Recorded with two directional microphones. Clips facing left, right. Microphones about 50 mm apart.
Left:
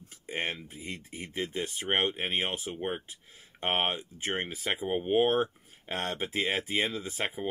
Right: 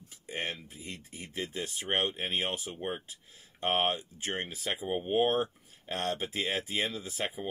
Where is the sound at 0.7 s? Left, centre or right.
Left.